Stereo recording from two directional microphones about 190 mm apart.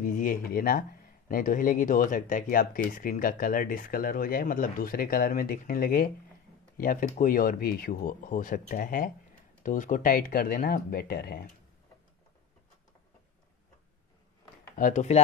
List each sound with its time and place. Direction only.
0.0 s speech: 45° left (ahead or behind)
14.8 s speech: 40° left (ahead or behind)